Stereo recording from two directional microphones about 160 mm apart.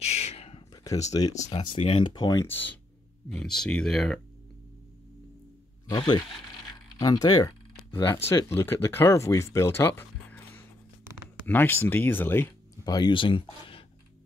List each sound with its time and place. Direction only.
0.0 s a sound: 40° left (ahead or behind)
1.1 s speech: 25° left (ahead or behind)
2.4 s speech: 10° left (ahead or behind)
5.9 s speech: 25° left (ahead or behind)
12.8 s speech: 25° left (ahead or behind)